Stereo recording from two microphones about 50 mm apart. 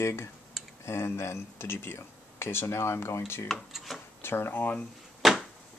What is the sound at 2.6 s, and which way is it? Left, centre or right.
Speech, left.